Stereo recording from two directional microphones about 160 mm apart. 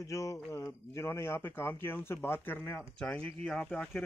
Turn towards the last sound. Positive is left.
turn(degrees=0)  # may be behind; listen again after turning